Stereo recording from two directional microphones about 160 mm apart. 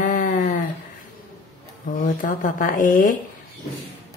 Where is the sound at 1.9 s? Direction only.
55° left (ahead or behind).